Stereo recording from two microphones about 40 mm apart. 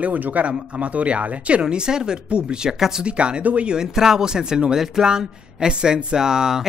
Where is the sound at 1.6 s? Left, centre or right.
Centre.